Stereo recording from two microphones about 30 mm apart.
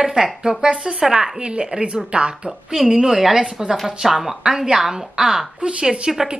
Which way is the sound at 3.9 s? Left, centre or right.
Centre.